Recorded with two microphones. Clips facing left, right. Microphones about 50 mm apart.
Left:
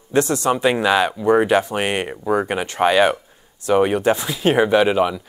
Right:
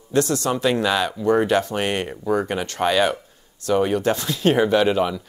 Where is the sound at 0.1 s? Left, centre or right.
Left.